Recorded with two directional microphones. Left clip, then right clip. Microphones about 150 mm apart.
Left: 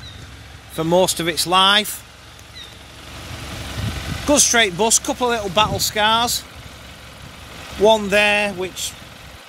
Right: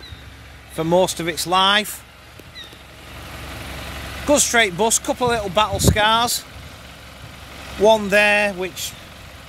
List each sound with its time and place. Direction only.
0.7 s speech: centre (ahead or behind)
3.4 s speech: 5° left (ahead or behind)
7.5 s vehicle: 35° left (ahead or behind)
7.8 s speech: 5° right (ahead or behind)